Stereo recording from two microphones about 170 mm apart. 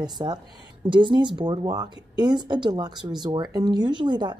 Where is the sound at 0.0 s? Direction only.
25° right (ahead or behind).